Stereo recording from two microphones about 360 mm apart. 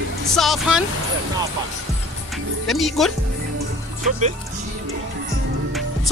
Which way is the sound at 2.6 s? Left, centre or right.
Centre.